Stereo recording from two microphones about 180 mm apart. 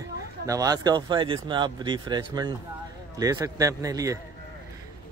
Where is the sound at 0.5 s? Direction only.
20° right (ahead or behind).